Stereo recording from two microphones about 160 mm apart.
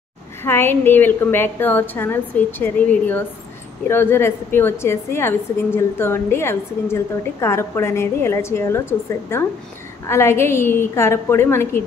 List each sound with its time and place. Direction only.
0.4 s a woman's voice: 15° left (ahead or behind)